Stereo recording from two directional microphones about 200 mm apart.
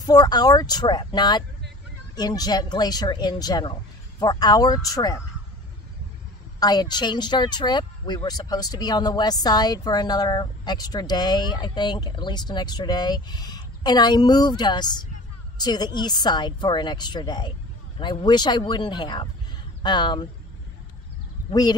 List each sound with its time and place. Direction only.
0.0 s speech: 20° left (ahead or behind)
6.6 s speech: 20° left (ahead or behind)
21.5 s speech: 20° left (ahead or behind)